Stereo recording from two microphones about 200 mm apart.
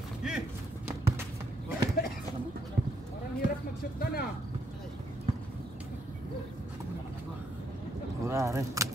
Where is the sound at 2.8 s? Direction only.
45° right (ahead or behind).